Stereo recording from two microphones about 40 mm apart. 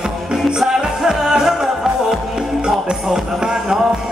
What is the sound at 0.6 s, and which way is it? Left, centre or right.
Music, centre.